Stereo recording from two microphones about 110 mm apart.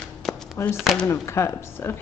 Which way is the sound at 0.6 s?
25° left (ahead or behind).